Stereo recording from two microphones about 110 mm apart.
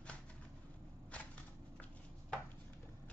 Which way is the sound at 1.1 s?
10° left (ahead or behind).